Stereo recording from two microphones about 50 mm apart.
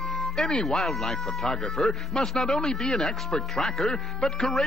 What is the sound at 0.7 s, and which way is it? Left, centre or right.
Speech, centre.